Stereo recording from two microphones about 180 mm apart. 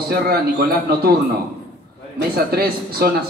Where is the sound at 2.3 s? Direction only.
55° right (ahead or behind).